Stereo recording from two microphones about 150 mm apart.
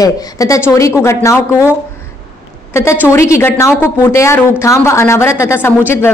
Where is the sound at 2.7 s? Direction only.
20° left (ahead or behind).